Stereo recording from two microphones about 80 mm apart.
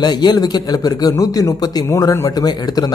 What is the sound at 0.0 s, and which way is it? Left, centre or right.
Speech, left.